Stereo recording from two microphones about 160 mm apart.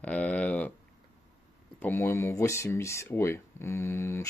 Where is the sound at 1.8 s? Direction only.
15° left (ahead or behind).